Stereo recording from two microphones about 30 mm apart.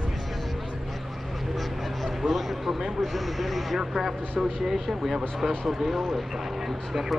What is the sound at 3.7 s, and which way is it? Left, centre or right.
Speech, centre.